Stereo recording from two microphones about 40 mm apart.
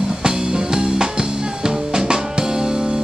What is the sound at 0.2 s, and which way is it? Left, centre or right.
Music, centre.